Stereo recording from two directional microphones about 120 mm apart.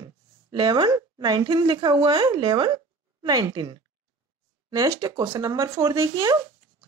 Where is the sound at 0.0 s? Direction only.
35° right (ahead or behind).